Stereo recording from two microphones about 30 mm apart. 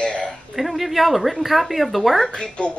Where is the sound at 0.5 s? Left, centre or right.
Centre.